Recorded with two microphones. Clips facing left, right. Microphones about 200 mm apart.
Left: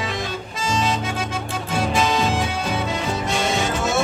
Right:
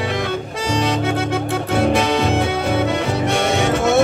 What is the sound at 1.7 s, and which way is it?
Music, 60° right (ahead or behind).